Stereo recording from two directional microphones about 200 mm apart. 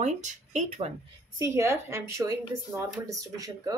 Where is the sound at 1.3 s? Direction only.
15° right (ahead or behind).